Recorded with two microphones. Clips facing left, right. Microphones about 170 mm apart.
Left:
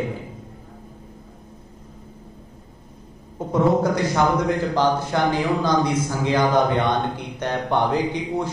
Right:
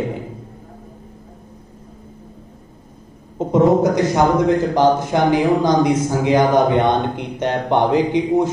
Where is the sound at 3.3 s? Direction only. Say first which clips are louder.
Right 5 dB; 20° right (ahead or behind).